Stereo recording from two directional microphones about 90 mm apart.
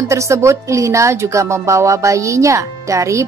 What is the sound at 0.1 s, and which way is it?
A woman's voice, 35° right (ahead or behind).